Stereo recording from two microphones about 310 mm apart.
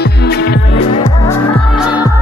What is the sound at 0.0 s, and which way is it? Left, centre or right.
Music, left.